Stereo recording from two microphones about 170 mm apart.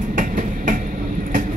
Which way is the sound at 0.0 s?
50° right (ahead or behind).